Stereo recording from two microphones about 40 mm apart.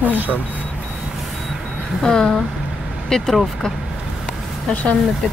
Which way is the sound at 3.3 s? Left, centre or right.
Centre.